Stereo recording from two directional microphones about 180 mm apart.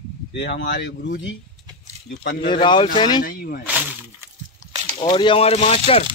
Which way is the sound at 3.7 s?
10° right (ahead or behind).